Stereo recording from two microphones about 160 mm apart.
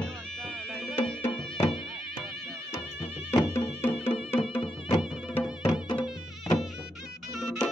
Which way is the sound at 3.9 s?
35° left (ahead or behind).